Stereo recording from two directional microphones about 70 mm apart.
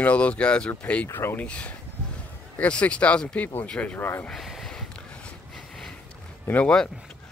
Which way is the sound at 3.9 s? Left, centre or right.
Left.